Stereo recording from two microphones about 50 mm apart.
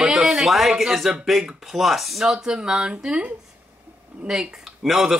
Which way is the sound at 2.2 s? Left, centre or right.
Centre.